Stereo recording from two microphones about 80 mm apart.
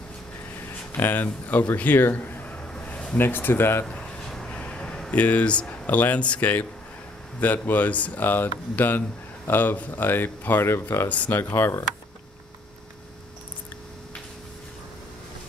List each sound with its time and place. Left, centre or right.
0.9 s a man's voice: left
3.2 s speech: left
3.8 s a sound: centre
7.3 s speech: left
11.1 s speech: left